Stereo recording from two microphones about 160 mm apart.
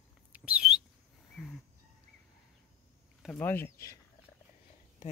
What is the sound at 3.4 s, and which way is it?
Speech, 15° left (ahead or behind).